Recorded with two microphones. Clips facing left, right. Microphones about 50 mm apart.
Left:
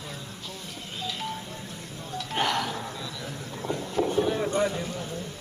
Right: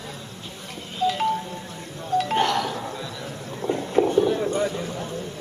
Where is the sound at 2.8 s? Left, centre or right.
Centre.